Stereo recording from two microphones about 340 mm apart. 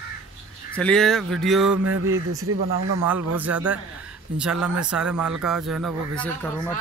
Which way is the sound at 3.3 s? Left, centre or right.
Centre.